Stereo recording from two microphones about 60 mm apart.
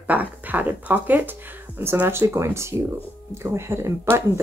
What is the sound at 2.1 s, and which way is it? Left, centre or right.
Speech, right.